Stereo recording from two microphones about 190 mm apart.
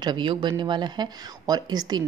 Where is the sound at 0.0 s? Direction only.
25° right (ahead or behind).